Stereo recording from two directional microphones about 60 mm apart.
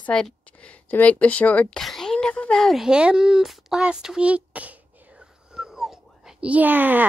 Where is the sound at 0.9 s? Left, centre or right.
Left.